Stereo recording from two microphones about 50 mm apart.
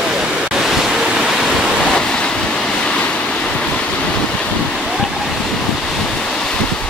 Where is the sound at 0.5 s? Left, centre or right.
Centre.